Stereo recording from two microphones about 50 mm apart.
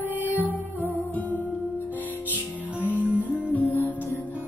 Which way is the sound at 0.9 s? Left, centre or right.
Left.